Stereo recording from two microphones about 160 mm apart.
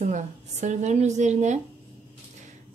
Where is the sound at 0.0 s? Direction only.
45° right (ahead or behind).